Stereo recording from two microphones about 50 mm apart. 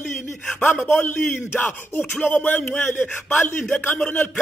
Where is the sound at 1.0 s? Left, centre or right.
Left.